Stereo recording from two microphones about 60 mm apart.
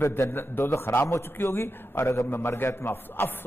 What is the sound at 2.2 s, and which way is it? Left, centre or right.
A man's voice, left.